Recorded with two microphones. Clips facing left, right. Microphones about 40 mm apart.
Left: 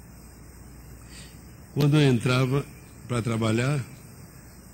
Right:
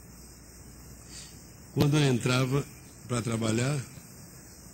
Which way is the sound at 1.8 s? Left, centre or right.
Centre.